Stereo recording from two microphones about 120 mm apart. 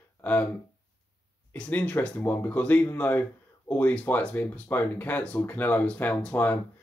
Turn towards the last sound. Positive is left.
turn(degrees=15)  # may be behind; listen again after turning